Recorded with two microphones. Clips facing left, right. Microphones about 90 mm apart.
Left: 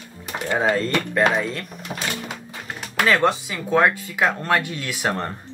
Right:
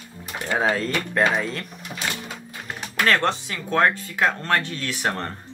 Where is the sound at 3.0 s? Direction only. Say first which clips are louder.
Left 2 dB; 5° left (ahead or behind).